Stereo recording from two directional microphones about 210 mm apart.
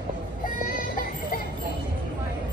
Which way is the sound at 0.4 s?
40° left (ahead or behind).